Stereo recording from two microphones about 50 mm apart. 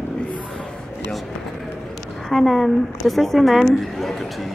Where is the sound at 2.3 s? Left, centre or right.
Centre.